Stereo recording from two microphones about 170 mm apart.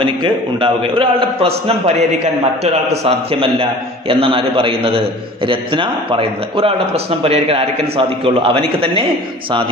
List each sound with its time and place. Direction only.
0.0 s a man's voice: 30° right (ahead or behind)